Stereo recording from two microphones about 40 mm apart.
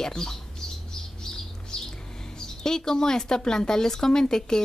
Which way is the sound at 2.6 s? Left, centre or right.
Centre.